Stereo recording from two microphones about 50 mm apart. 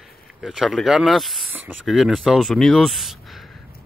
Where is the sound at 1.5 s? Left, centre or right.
Right.